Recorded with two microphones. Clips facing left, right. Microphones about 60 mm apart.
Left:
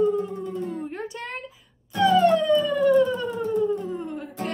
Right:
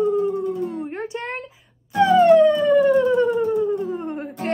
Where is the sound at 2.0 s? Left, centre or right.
Right.